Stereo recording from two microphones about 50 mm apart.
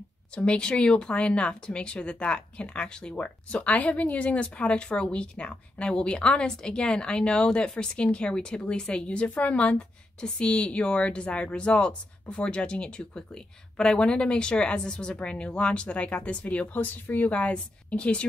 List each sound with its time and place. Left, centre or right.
0.4 s speech: left
16.7 s speech: left